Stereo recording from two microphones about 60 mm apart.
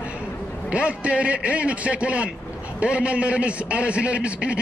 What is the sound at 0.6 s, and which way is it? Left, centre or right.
A man's voice, right.